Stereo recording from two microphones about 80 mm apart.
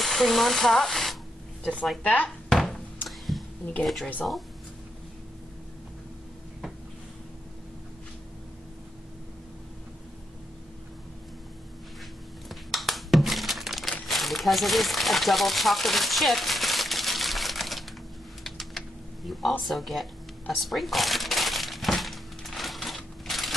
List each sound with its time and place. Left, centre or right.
0.0 s speech: centre
2.2 s chopping: centre
3.1 s a sound: centre
3.8 s speech: centre
12.4 s crumpling: centre
18.4 s typing: centre
19.6 s shuffling cards: centre